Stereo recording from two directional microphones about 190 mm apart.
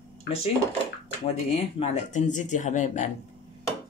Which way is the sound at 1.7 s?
40° left (ahead or behind).